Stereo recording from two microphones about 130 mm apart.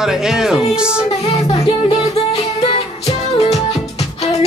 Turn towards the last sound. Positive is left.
turn(degrees=55)  # may be behind; listen again after turning